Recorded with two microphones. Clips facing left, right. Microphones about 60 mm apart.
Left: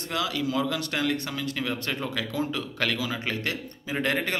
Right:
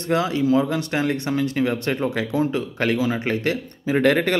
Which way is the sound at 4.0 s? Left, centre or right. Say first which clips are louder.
Right 9 dB; right.